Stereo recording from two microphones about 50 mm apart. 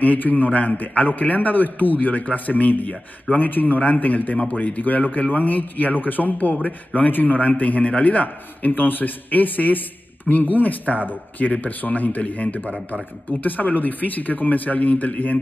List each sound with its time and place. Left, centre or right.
0.0 s a man's voice: left